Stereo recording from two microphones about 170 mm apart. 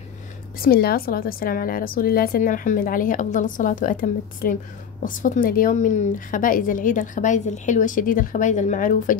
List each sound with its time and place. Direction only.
0.6 s a woman's voice: 60° left (ahead or behind)